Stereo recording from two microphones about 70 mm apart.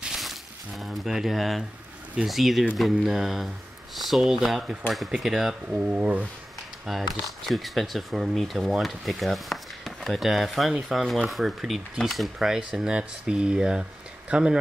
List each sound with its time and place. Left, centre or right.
0.0 s a sound: centre
2.2 s speech: centre
5.7 s speech: centre
6.9 s speech: centre